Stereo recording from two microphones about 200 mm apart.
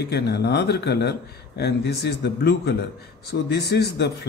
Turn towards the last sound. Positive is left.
turn(degrees=55)  # may be behind; listen again after turning